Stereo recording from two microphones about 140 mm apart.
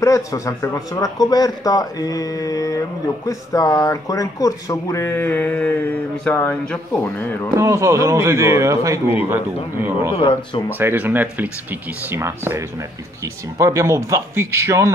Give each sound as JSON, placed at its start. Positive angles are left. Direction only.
{"t": 0.0, "sound": "speech", "side_deg": 25}
{"t": 7.5, "sound": "speech", "side_deg": -20}
{"t": 10.1, "sound": "speech", "side_deg": 35}
{"t": 10.8, "sound": "speech", "side_deg": -15}